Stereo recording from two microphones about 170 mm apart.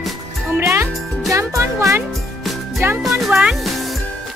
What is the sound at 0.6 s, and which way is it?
Music, 15° right (ahead or behind).